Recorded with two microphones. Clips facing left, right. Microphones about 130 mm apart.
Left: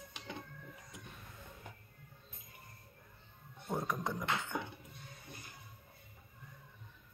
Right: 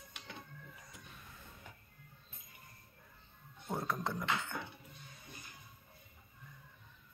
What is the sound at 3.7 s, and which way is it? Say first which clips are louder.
Beatboxing: left 1 dB; 15° left (ahead or behind).